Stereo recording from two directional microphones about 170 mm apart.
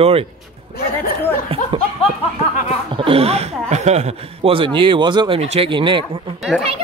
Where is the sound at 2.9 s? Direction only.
35° right (ahead or behind).